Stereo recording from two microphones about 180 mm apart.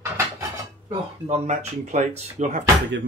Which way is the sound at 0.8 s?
35° right (ahead or behind).